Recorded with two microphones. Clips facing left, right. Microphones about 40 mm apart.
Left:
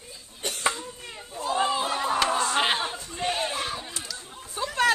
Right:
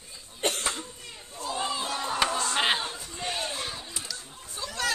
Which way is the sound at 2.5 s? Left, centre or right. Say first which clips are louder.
Left 2 dB; centre.